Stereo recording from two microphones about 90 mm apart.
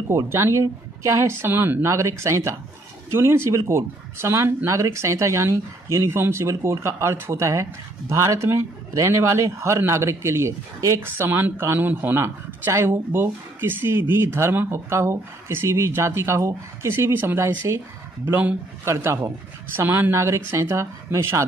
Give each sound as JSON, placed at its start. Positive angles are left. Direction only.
{"t": 0.3, "sound": "speech", "side_deg": -30}
{"t": 18.9, "sound": "speech", "side_deg": -30}